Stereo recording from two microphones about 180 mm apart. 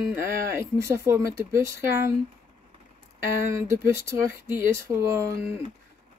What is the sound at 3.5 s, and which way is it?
Speech, 15° right (ahead or behind).